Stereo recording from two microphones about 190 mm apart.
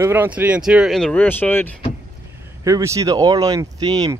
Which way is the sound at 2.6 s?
15° right (ahead or behind).